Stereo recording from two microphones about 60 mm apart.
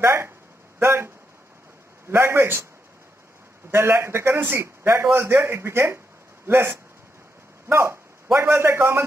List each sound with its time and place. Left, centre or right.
0.0 s a man's voice: right
3.7 s a man's voice: right